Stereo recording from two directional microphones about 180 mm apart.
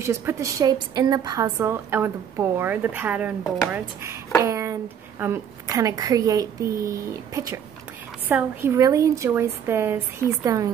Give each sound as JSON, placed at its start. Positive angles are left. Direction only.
{"t": 0.0, "sound": "a woman's voice", "side_deg": -15}